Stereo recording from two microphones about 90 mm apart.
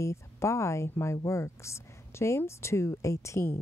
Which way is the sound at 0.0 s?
35° left (ahead or behind).